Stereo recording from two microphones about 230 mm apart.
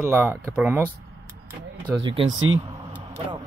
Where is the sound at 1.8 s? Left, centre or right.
Right.